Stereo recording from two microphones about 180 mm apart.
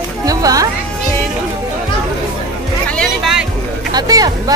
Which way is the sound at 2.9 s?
Centre (ahead or behind).